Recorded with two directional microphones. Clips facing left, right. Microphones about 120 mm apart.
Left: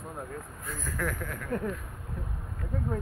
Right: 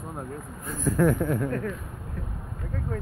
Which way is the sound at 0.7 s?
25° right (ahead or behind).